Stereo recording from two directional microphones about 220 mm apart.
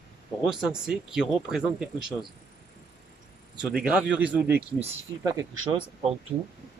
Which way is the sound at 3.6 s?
5° right (ahead or behind).